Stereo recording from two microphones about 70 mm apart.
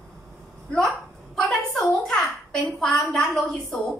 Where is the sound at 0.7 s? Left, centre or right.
Centre.